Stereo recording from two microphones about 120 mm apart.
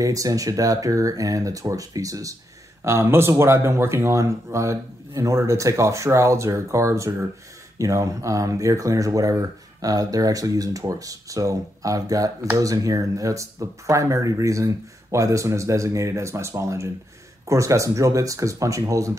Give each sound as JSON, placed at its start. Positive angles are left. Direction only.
{"t": 0.0, "sound": "speech", "side_deg": -30}